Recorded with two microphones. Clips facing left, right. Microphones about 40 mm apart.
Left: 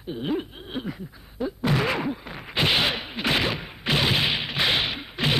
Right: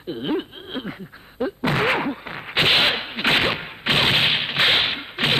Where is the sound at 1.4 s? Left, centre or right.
Right.